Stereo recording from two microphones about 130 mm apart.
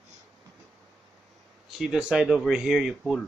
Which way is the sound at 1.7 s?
5° right (ahead or behind).